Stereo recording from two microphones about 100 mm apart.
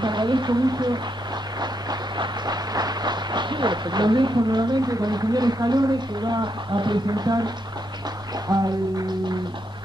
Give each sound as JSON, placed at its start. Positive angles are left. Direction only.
{"t": 0.0, "sound": "speech", "side_deg": -50}
{"t": 1.6, "sound": "a sound", "side_deg": -45}
{"t": 8.5, "sound": "music", "side_deg": -40}